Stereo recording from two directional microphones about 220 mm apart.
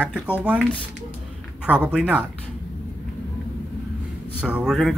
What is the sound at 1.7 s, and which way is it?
Speech, 5° right (ahead or behind).